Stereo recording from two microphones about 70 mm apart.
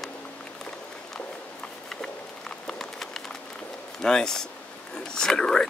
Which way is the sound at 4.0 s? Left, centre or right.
Centre.